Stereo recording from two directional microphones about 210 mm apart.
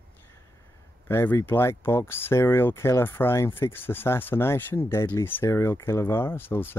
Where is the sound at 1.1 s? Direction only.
10° left (ahead or behind).